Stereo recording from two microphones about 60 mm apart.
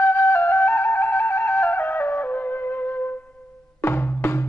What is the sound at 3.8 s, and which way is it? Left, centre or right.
Music, left.